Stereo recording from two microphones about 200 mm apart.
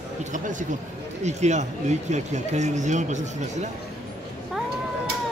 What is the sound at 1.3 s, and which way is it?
Speech, 35° right (ahead or behind).